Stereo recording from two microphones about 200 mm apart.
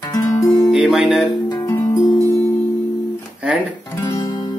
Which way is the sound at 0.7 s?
Centre (ahead or behind).